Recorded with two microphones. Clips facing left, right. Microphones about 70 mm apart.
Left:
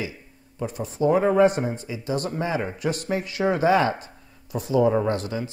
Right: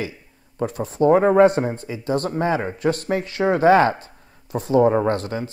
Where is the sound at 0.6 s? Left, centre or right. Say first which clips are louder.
Right 5 dB; right.